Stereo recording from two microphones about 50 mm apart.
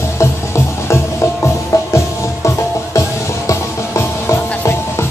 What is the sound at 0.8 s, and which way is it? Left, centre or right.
Music, left.